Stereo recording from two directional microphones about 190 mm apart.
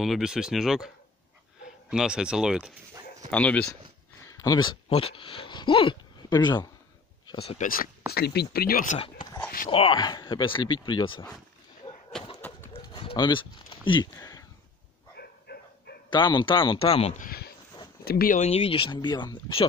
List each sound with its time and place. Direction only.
0.0 s speech: centre (ahead or behind)
3.3 s speech: 5° left (ahead or behind)
4.3 s speech: 20° left (ahead or behind)
7.6 s speech: 50° left (ahead or behind)
9.0 s speech: 25° left (ahead or behind)
11.8 s a sound: 30° left (ahead or behind)
12.4 s horse: 10° left (ahead or behind)
12.7 s a sound: 30° left (ahead or behind)
13.1 s speech: 25° left (ahead or behind)
15.1 s a sound: 55° left (ahead or behind)
16.1 s speech: 25° left (ahead or behind); by 18.4 s 50° left (ahead or behind)
18.4 s speech: 30° left (ahead or behind)